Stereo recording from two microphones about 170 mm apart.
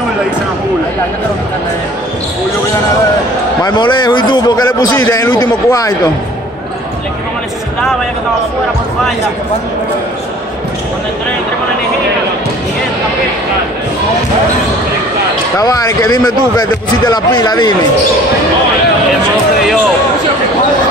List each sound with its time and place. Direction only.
3.6 s a man's voice: 25° left (ahead or behind)
4.9 s a man's voice: 10° left (ahead or behind)
5.3 s a man's voice: 20° left (ahead or behind)
15.5 s a man's voice: 20° left (ahead or behind)
17.1 s a man's voice: 25° left (ahead or behind)